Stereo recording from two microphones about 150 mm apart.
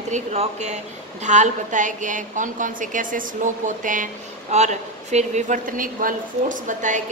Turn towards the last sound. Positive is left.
turn(degrees=-55)  # may be behind; listen again after turning